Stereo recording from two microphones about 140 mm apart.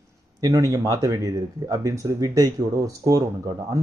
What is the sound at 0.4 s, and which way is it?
Speech, 25° right (ahead or behind).